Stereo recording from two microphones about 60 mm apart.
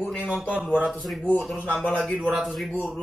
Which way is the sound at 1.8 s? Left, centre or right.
Left.